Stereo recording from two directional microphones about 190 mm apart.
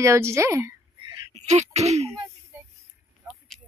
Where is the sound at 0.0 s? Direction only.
15° right (ahead or behind).